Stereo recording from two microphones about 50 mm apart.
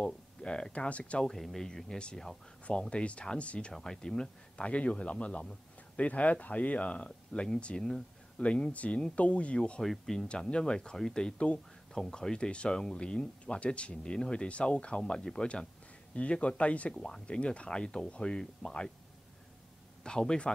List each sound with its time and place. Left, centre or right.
0.0 s speech: centre
1.2 s speech: centre; by 3.7 s left
3.7 s speech: centre; by 9.6 s left
9.8 s speech: centre; by 16.9 s left
16.9 s speech: centre
20.0 s speech: centre